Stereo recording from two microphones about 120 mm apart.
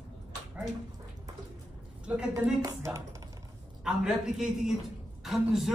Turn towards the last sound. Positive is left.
turn(degrees=0)  # may be behind; listen again after turning